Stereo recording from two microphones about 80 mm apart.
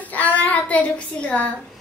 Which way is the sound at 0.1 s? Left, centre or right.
Centre.